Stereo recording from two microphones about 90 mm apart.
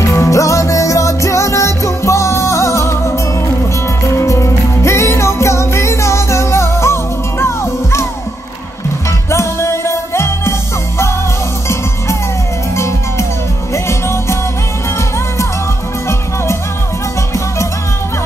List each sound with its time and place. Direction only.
0.1 s music: 35° left (ahead or behind)
9.3 s music: 30° left (ahead or behind)
12.7 s music: 30° left (ahead or behind)